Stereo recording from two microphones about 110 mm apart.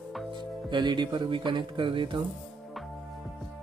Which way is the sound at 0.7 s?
45° right (ahead or behind).